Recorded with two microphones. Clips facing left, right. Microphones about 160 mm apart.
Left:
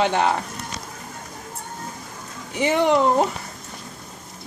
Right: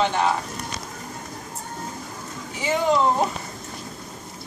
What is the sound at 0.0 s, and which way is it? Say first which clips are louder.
Speech: left 2 dB; 65° left (ahead or behind).